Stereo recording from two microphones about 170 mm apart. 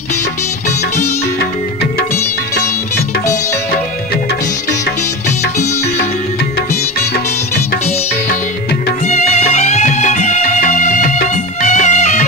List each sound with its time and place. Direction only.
9.0 s music: 45° left (ahead or behind)